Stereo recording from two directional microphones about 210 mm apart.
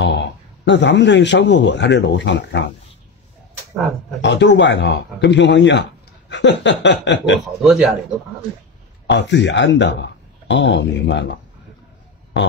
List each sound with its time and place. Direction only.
0.0 s a man's voice: 55° left (ahead or behind)
4.2 s speech: 55° left (ahead or behind)
7.6 s speech: centre (ahead or behind)
9.0 s speech: 55° left (ahead or behind)